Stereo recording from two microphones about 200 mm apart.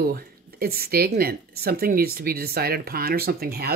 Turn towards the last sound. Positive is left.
turn(degrees=-50)  # may be behind; listen again after turning